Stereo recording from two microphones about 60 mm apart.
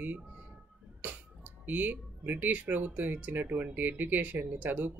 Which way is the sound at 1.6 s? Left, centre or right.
Right.